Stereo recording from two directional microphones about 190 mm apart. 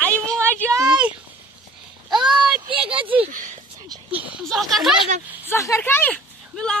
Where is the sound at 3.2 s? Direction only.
40° right (ahead or behind).